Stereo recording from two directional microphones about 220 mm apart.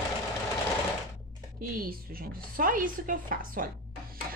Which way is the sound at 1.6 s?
40° right (ahead or behind).